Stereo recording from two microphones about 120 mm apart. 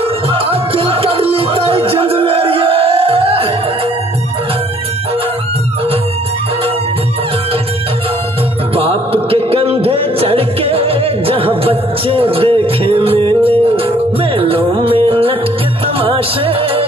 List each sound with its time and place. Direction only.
0.3 s music: 50° right (ahead or behind)
8.7 s music: 50° right (ahead or behind)